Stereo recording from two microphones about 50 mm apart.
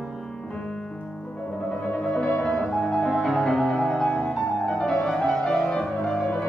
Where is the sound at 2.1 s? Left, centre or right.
Left.